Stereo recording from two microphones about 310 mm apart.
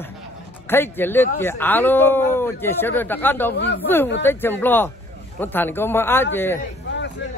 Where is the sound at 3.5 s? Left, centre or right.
Left.